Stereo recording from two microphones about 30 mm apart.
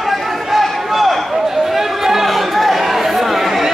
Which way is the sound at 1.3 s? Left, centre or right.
Centre.